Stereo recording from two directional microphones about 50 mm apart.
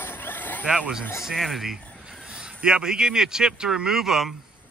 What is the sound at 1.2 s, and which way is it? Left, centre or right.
Speech, centre.